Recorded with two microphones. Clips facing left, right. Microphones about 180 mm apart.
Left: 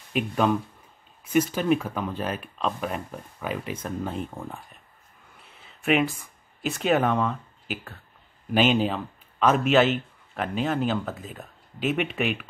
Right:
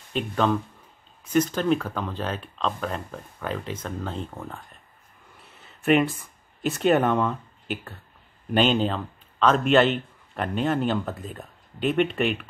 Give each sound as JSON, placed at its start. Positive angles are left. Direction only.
{"t": 0.1, "sound": "speech", "side_deg": 10}